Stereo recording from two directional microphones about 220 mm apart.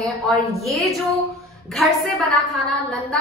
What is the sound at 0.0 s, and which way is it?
A woman's voice, centre (ahead or behind).